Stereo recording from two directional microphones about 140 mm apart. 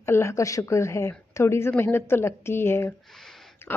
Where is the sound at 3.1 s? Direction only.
Centre (ahead or behind).